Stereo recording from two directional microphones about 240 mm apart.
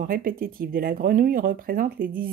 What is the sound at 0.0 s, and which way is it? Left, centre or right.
Speech, right.